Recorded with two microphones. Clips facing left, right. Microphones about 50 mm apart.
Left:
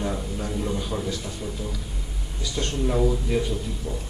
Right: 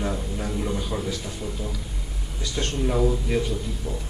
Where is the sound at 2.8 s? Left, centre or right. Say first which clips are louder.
Even; centre.